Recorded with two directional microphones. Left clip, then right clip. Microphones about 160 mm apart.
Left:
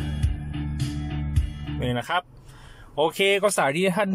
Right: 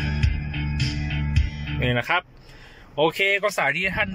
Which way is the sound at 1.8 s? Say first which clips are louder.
Right 3 dB; 5° left (ahead or behind).